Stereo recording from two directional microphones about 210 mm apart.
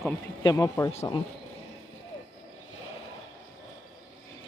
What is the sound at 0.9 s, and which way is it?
Speech, 30° left (ahead or behind).